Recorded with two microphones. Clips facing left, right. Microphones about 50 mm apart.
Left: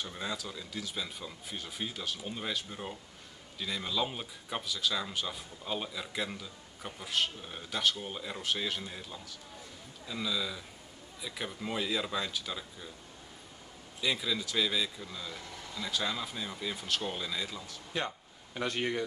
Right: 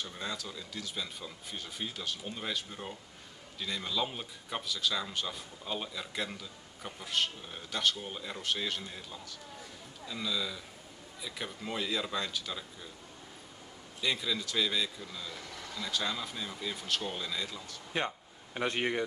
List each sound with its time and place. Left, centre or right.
0.0 s speech: centre
14.0 s speech: centre
17.9 s a man's voice: right